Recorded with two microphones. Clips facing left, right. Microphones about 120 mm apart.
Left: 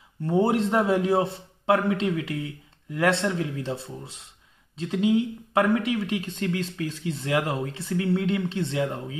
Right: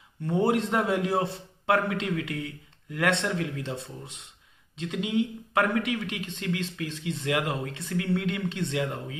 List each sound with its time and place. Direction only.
0.2 s a man's voice: 25° left (ahead or behind)